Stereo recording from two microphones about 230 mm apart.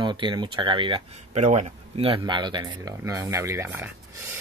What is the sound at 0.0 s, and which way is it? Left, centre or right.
Speech, centre.